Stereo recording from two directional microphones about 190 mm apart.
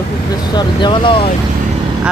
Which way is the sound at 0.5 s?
25° left (ahead or behind).